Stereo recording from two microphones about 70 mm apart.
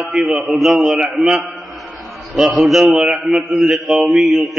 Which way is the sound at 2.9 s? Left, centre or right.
Centre.